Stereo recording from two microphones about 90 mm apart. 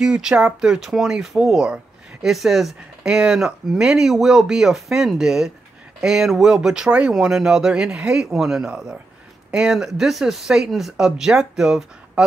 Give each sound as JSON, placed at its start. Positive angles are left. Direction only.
{"t": 0.0, "sound": "speech", "side_deg": -10}